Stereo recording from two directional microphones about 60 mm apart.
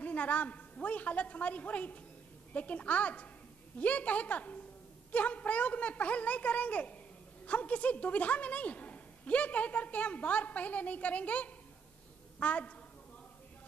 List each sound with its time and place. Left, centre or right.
0.0 s a woman's voice: left